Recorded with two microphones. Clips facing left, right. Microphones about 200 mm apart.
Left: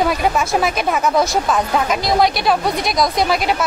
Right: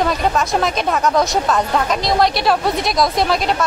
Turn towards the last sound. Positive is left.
turn(degrees=5)  # may be behind; listen again after turning